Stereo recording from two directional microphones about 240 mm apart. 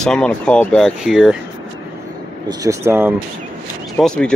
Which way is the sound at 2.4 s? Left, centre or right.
Centre.